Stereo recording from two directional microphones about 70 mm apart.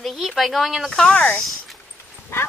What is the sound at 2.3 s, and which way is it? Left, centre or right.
Clip-clop, left.